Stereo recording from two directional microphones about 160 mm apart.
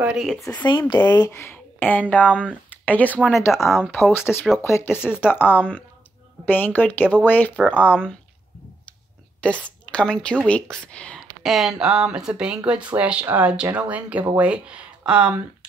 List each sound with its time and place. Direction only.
0.0 s speech: 5° right (ahead or behind)
0.7 s speech: 30° left (ahead or behind); by 3.2 s 10° left (ahead or behind)
3.5 s speech: centre (ahead or behind)
4.6 s speech: 15° left (ahead or behind)
9.8 s speech: 5° left (ahead or behind)